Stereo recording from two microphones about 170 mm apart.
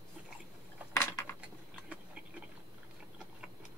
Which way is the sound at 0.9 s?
15° left (ahead or behind).